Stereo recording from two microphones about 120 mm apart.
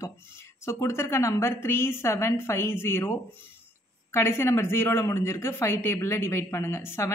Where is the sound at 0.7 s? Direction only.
25° left (ahead or behind).